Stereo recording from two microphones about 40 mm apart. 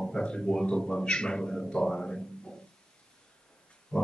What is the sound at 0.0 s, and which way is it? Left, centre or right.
Speech, centre.